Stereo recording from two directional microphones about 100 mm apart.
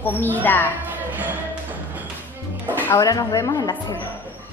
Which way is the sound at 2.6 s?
20° left (ahead or behind).